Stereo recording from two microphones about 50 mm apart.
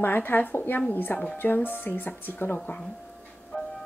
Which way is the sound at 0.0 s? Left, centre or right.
Left.